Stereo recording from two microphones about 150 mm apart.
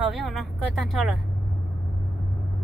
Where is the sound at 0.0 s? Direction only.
Centre (ahead or behind).